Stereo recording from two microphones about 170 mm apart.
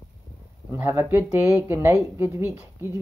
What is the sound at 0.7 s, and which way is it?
Speech, 10° right (ahead or behind).